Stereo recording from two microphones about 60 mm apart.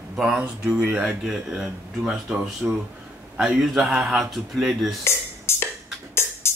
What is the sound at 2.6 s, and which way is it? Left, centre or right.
Speech, right.